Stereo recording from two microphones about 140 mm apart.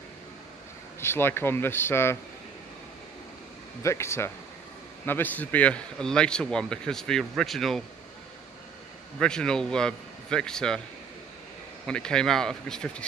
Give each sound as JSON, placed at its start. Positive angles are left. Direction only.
{"t": 1.0, "sound": "speech", "side_deg": 15}
{"t": 3.8, "sound": "a man's voice", "side_deg": 20}
{"t": 9.2, "sound": "a man's voice", "side_deg": 5}
{"t": 11.8, "sound": "a man's voice", "side_deg": 5}